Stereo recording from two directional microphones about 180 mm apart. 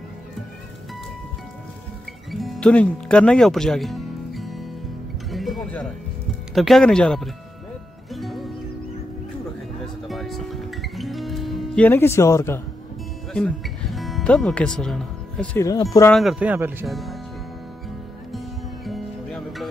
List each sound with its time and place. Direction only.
2.3 s music: centre (ahead or behind)
6.5 s speech: centre (ahead or behind)
8.1 s music: centre (ahead or behind)
10.0 s music: centre (ahead or behind)
13.3 s music: 5° left (ahead or behind)
15.6 s speech: 20° left (ahead or behind)
16.1 s speech: centre (ahead or behind)
16.8 s speech: centre (ahead or behind)
18.3 s music: centre (ahead or behind)